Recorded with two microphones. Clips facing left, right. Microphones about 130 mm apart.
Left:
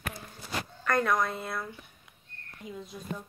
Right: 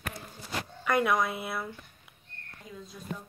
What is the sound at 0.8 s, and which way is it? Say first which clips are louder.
Speech: right 1 dB; 10° right (ahead or behind).